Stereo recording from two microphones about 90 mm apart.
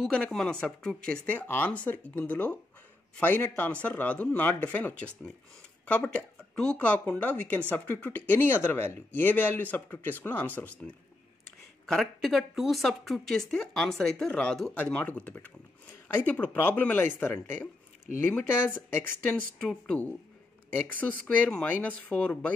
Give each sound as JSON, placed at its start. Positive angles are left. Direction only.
{"t": 0.1, "sound": "speech", "side_deg": 10}
{"t": 11.8, "sound": "a woman's voice", "side_deg": 5}
{"t": 19.6, "sound": "speech", "side_deg": 10}